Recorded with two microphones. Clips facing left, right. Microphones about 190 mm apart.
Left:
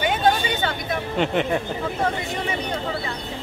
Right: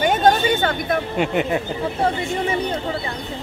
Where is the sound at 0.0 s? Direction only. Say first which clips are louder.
Right 4 dB; 45° right (ahead or behind).